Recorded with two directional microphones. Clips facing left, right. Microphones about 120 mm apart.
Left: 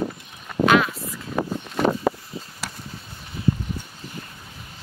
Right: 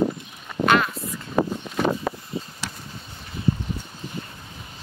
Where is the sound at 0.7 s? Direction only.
Centre (ahead or behind).